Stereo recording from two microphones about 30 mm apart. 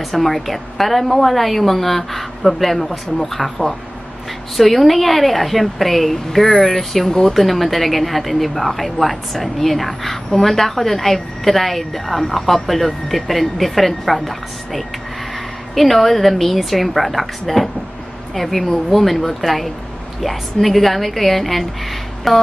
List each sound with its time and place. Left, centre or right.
0.1 s a woman's voice: centre